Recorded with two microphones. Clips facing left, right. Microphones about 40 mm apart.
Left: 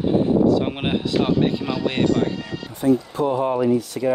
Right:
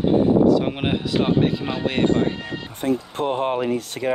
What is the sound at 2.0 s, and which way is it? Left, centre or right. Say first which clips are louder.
Speech: right 1 dB; right.